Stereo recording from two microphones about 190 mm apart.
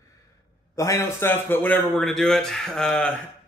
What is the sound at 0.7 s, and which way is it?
A man's voice, 15° left (ahead or behind).